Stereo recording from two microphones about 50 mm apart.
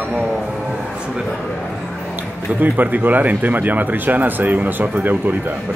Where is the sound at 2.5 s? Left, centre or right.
Right.